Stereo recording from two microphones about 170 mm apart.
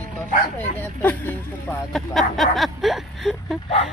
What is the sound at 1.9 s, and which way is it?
Speech, centre (ahead or behind).